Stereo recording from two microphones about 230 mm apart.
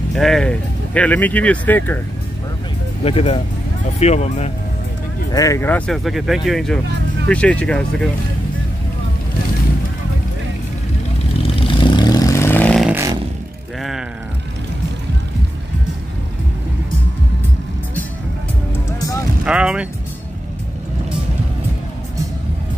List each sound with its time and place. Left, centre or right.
0.1 s speech: centre
3.0 s speech: left
5.3 s speech: centre
11.4 s vehicle: left; by 13.0 s centre
18.9 s music: centre
19.4 s speech: centre